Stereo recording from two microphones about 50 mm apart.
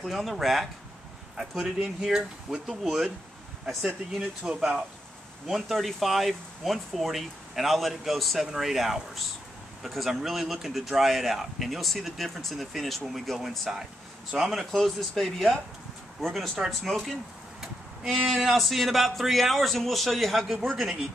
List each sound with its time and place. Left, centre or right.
0.0 s speech: centre
4.5 s speech: centre
5.5 s speech: centre
18.1 s speech: centre